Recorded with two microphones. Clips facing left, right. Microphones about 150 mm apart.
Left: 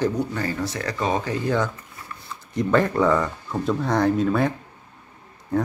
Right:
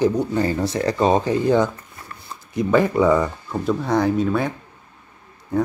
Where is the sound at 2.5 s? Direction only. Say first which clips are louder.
Right 2 dB; 5° right (ahead or behind).